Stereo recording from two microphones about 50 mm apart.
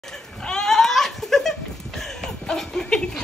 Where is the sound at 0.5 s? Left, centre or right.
Centre.